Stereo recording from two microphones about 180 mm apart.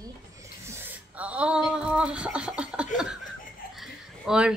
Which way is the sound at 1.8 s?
5° right (ahead or behind).